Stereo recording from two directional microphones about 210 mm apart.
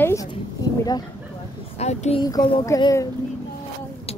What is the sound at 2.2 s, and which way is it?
Speech, 15° left (ahead or behind).